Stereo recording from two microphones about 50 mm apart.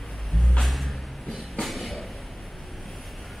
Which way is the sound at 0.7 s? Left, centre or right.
Centre.